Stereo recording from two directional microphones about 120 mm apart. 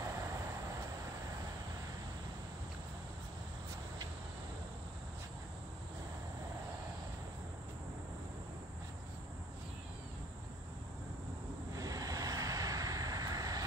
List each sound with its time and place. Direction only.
0.0 s vehicle: 25° right (ahead or behind)
11.7 s vehicle: 30° right (ahead or behind)